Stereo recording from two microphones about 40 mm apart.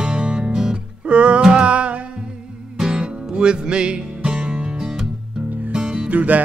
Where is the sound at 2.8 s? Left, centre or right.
Right.